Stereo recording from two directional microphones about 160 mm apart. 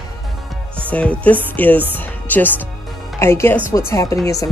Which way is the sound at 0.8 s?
10° left (ahead or behind).